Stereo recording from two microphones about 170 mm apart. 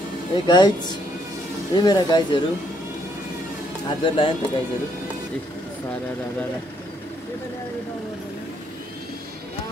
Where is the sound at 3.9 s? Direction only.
30° left (ahead or behind).